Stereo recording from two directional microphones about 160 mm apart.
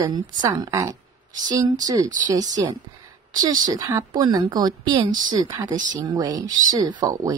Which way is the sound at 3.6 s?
25° right (ahead or behind).